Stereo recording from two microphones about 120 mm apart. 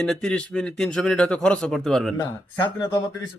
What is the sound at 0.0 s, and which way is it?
A man's voice, 5° left (ahead or behind).